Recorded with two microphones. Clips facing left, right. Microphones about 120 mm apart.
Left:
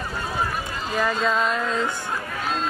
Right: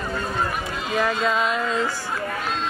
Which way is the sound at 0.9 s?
Centre (ahead or behind).